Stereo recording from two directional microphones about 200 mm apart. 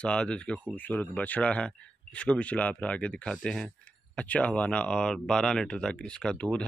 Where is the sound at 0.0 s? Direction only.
5° left (ahead or behind).